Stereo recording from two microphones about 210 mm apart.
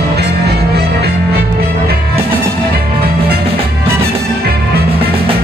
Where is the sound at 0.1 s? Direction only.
50° right (ahead or behind).